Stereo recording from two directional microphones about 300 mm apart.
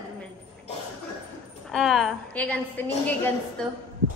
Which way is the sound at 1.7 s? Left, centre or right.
Centre.